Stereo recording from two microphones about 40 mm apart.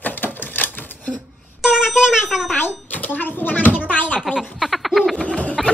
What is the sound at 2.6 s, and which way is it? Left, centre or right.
A child's voice, left.